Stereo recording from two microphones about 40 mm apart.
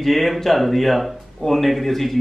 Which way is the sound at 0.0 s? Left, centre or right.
Centre.